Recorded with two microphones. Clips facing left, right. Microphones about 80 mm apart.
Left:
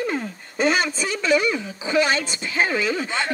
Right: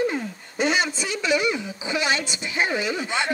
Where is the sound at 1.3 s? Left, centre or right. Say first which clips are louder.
Left 3 dB; left.